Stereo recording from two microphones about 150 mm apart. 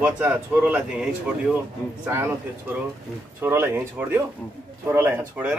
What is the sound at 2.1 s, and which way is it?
Speech, 15° right (ahead or behind).